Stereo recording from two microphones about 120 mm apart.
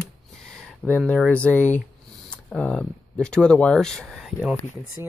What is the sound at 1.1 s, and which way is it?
Speech, 10° left (ahead or behind).